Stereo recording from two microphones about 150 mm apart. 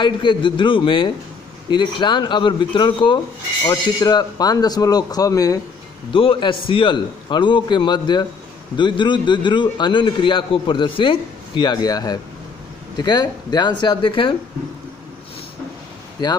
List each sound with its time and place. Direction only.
0.0 s a man's voice: 35° left (ahead or behind)
6.1 s a man's voice: 35° left (ahead or behind)
16.2 s speech: 25° left (ahead or behind)